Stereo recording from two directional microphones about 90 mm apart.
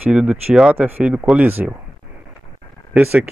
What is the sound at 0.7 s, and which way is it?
Speech, 20° right (ahead or behind).